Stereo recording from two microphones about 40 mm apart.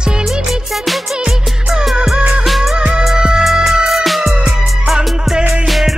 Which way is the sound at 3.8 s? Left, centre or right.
Centre.